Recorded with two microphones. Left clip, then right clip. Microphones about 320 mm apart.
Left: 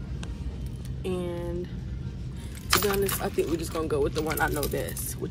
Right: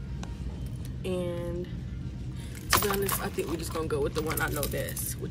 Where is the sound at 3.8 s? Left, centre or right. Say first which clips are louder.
Left 3 dB; centre.